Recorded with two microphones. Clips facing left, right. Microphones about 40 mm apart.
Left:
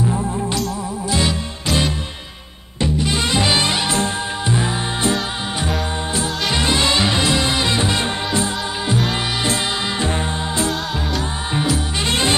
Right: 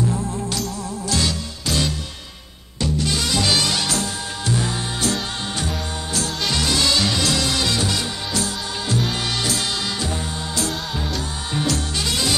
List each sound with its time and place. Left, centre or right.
1.1 s music: left
11.5 s music: centre
12.1 s music: left